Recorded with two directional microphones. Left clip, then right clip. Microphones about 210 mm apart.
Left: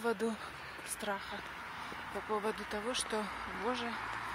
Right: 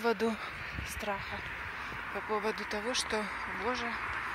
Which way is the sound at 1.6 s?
60° left (ahead or behind).